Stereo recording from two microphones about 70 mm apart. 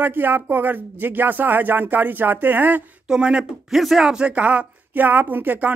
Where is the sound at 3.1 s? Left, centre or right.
Centre.